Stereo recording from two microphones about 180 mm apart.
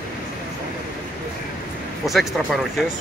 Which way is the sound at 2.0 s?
Centre (ahead or behind).